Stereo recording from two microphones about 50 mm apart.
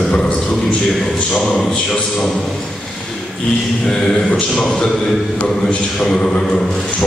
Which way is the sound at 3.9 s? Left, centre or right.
Centre.